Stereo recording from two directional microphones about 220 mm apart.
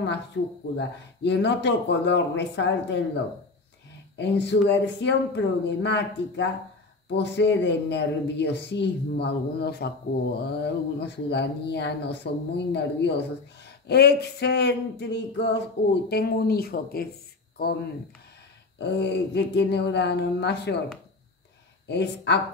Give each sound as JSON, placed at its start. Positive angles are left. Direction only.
{"t": 0.7, "sound": "speech", "side_deg": 50}
{"t": 4.2, "sound": "speech", "side_deg": 50}
{"t": 18.8, "sound": "speech", "side_deg": 50}
{"t": 21.8, "sound": "speech", "side_deg": 50}